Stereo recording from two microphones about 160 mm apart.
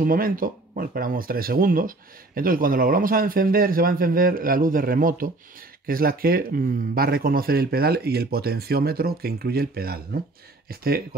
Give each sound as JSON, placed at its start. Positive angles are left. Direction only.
{"t": 0.0, "sound": "speech", "side_deg": -60}